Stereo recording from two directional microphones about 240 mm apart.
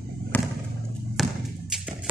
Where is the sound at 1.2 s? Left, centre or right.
Centre.